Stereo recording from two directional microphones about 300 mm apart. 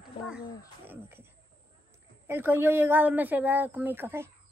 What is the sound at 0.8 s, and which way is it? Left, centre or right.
Speech, centre.